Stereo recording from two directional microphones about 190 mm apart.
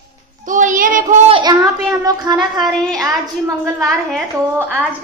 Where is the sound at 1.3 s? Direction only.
20° right (ahead or behind).